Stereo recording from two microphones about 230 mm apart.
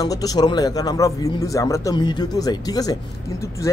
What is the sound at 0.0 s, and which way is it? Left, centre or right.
A man's voice, centre.